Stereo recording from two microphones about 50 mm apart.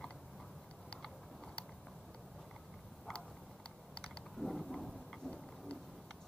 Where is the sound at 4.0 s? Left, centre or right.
Centre.